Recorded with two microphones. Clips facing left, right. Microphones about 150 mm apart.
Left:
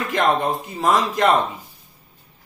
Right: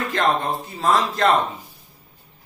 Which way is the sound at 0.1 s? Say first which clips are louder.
Left 3 dB; 15° left (ahead or behind).